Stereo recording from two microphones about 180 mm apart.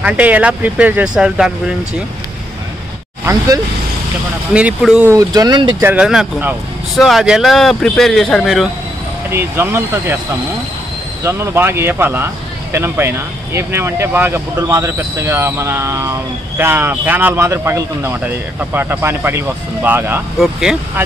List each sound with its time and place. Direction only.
0.0 s speech: 10° right (ahead or behind)
3.3 s speech: 15° right (ahead or behind)
4.6 s speech: 5° right (ahead or behind)
5.1 s speech: 20° right (ahead or behind)
5.8 s a man's voice: 10° right (ahead or behind)
9.3 s speech: 15° right (ahead or behind)
11.2 s speech: 15° right (ahead or behind)